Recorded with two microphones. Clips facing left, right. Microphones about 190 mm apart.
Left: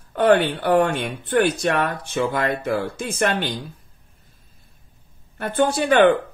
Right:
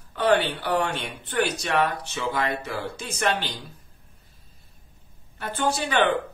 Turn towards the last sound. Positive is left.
turn(degrees=50)  # may be behind; listen again after turning